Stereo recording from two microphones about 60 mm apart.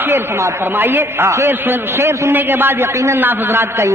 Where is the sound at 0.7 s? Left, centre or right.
Right.